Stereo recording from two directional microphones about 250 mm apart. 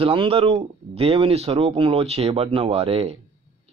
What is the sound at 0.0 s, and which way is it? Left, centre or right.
Speech, right.